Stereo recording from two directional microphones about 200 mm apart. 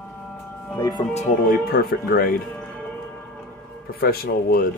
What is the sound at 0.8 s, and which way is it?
Music, 20° left (ahead or behind).